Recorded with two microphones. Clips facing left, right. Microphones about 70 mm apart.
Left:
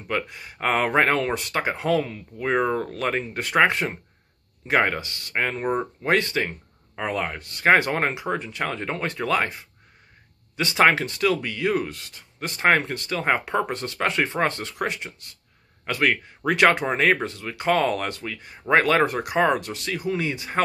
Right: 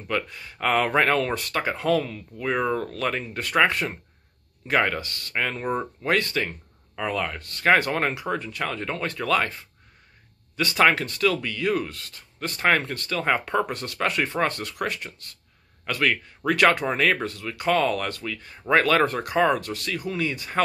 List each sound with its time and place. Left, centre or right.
0.1 s speech: left